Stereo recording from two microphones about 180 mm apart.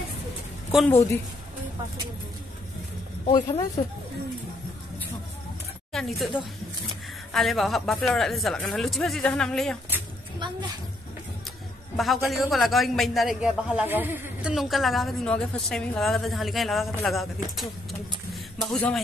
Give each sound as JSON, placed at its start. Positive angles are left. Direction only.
{"t": 0.8, "sound": "speech", "side_deg": 15}
{"t": 3.3, "sound": "speech", "side_deg": 25}
{"t": 5.9, "sound": "a man's voice", "side_deg": 0}
{"t": 12.3, "sound": "a man's voice", "side_deg": 0}